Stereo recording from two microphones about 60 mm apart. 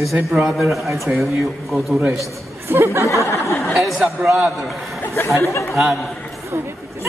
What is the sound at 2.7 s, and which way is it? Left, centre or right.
Speech, right.